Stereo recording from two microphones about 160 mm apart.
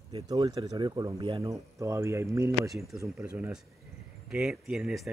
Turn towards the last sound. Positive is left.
turn(degrees=-5)  # may be behind; listen again after turning